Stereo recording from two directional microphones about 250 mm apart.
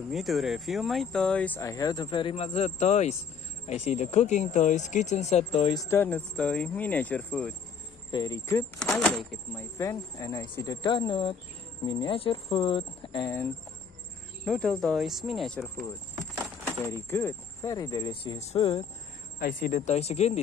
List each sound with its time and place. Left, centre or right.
0.1 s speech: centre; by 5.8 s left
5.8 s speech: centre
14.4 s speech: centre; by 18.9 s left
19.3 s speech: left